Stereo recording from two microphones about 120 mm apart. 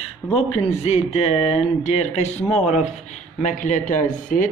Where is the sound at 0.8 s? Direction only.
60° left (ahead or behind).